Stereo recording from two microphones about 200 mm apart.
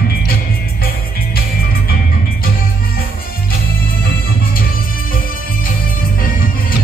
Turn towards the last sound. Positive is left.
turn(degrees=45)  # may be behind; listen again after turning